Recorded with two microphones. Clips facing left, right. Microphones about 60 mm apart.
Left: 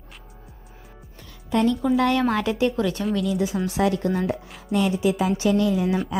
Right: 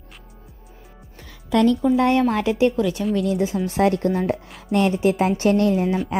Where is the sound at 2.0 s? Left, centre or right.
Right.